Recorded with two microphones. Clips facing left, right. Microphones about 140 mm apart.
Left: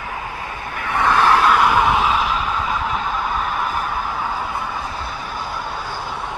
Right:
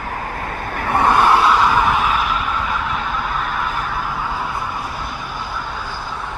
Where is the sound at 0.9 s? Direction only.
30° right (ahead or behind).